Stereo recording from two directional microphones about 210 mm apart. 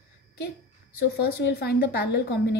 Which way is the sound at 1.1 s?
50° left (ahead or behind).